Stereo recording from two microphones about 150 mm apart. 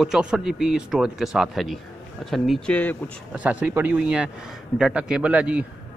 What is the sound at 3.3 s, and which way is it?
A man's voice, 10° right (ahead or behind).